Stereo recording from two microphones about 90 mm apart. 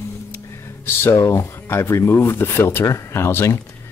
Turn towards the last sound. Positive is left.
turn(degrees=30)  # may be behind; listen again after turning